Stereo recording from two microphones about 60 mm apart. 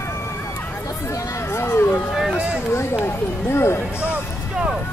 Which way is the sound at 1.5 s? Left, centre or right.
Left.